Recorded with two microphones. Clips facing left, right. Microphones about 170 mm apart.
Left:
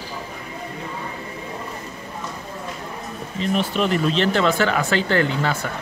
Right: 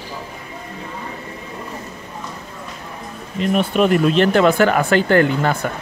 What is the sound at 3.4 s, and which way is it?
Speech, 55° right (ahead or behind).